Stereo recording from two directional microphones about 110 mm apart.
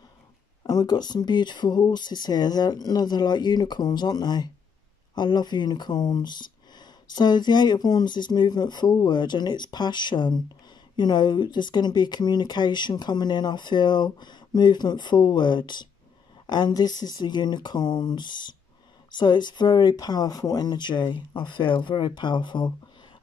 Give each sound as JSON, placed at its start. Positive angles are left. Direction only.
{"t": 0.7, "sound": "speech", "side_deg": 35}